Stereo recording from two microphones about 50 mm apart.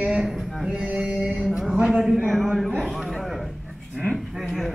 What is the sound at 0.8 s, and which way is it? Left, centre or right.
Music, right.